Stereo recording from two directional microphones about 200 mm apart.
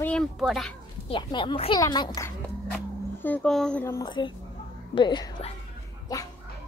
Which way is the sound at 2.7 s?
5° left (ahead or behind).